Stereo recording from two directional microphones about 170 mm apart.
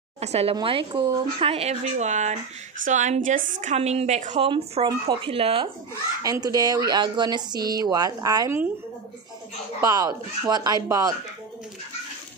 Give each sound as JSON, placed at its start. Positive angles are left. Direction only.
{"t": 0.2, "sound": "a woman's voice", "side_deg": -40}
{"t": 4.5, "sound": "speech", "side_deg": -30}
{"t": 6.2, "sound": "speech", "side_deg": -20}
{"t": 9.8, "sound": "speech", "side_deg": -20}